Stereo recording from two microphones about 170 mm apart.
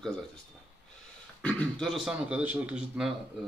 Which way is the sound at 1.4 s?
10° left (ahead or behind).